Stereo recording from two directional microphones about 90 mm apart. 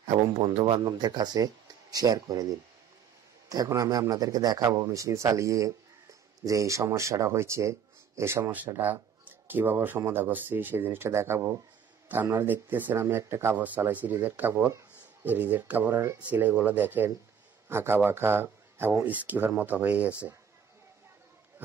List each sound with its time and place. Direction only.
0.4 s speech: 90° right
0.7 s speech: 50° right (ahead or behind)
3.4 s a man's voice: 40° right (ahead or behind); by 20.1 s 15° right (ahead or behind)